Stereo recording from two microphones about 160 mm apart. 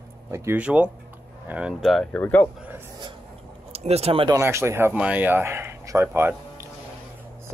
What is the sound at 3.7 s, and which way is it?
Speech, 40° right (ahead or behind).